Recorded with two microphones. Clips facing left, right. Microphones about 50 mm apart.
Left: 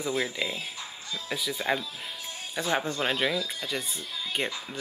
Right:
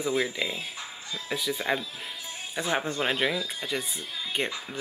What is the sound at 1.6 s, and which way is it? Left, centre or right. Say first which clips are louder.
Speech: left 1 dB; centre.